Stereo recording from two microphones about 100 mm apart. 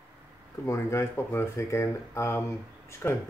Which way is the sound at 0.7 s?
30° left (ahead or behind).